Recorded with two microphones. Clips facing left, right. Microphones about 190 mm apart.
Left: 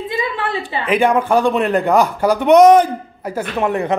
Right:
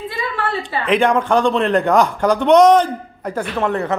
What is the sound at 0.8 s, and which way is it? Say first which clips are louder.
A man's voice: left 1 dB; 5° left (ahead or behind).